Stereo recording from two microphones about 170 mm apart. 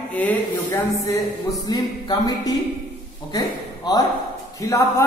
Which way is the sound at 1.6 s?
20° left (ahead or behind).